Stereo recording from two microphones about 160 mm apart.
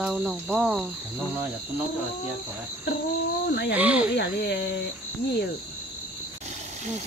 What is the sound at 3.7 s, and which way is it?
Speech, 10° right (ahead or behind).